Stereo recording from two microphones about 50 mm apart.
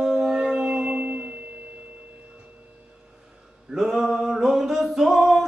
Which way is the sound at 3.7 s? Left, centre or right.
Centre.